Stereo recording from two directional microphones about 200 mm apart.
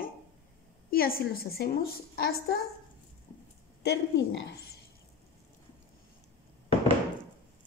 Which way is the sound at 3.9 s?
55° left (ahead or behind).